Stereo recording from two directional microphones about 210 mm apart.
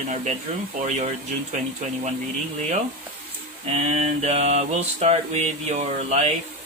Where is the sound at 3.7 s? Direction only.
30° right (ahead or behind).